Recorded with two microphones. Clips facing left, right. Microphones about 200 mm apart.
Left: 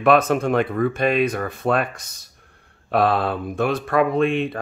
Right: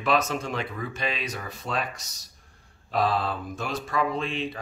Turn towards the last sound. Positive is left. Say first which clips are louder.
# left 10 dB
turn(degrees=55)  # may be behind; listen again after turning